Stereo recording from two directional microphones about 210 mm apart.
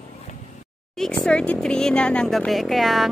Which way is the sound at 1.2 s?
5° left (ahead or behind).